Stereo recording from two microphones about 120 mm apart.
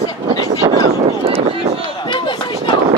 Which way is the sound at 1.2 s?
55° right (ahead or behind).